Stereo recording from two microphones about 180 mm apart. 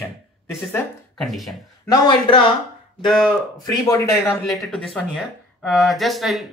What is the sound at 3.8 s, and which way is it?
Speech, 20° left (ahead or behind).